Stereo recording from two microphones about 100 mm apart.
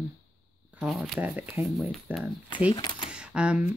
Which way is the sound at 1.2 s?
20° right (ahead or behind).